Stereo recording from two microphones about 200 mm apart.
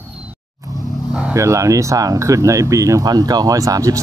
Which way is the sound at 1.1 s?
10° right (ahead or behind).